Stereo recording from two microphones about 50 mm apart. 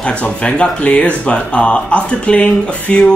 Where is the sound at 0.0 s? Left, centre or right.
Centre.